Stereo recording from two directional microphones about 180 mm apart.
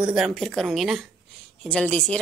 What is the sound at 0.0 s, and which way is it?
A woman's voice, 5° right (ahead or behind).